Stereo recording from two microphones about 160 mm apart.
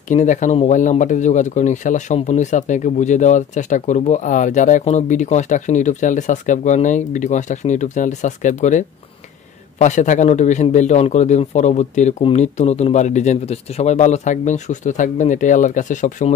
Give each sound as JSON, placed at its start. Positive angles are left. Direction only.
{"t": 0.1, "sound": "speech", "side_deg": 50}